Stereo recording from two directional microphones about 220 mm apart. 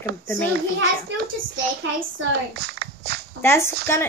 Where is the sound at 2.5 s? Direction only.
45° right (ahead or behind).